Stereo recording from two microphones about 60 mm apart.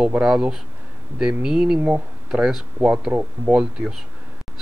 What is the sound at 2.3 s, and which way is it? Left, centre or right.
Speech, centre.